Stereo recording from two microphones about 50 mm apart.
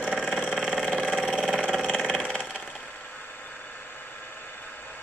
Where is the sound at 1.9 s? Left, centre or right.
Centre.